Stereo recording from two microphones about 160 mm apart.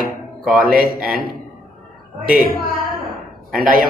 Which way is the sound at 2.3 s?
65° left (ahead or behind).